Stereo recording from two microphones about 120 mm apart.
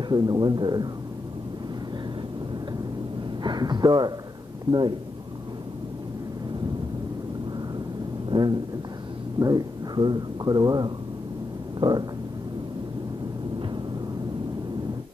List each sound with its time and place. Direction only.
0.1 s speech: 35° right (ahead or behind)
3.4 s speech: 35° right (ahead or behind)
8.3 s speech: 35° right (ahead or behind)
11.8 s a sound: 50° right (ahead or behind)